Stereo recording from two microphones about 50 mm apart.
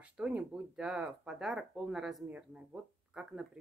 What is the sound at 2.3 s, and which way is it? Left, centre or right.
Speech, right.